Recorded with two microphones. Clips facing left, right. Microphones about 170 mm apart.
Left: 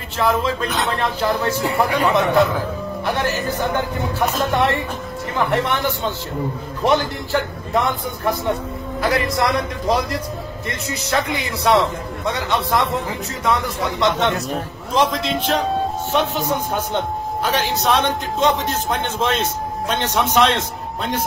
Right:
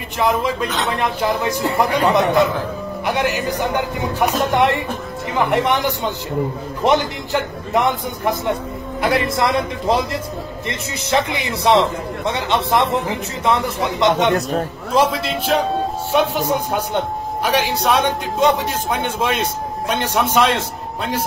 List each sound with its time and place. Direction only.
0.2 s a man's voice: 15° right (ahead or behind)
5.3 s a man's voice: 15° right (ahead or behind)
14.9 s a man's voice: 5° right (ahead or behind)